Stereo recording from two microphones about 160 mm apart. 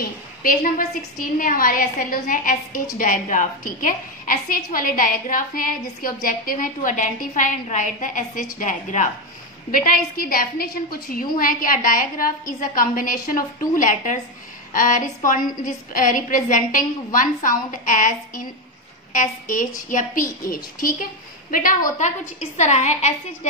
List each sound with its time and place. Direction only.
0.4 s a woman's voice: 60° left (ahead or behind); by 23.1 s 45° left (ahead or behind)